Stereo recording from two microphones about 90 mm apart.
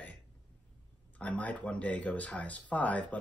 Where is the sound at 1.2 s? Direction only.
15° left (ahead or behind).